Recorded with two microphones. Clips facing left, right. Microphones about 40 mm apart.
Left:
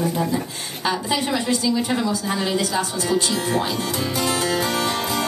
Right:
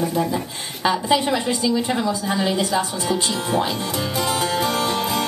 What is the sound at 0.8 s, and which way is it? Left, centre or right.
A woman's voice, right.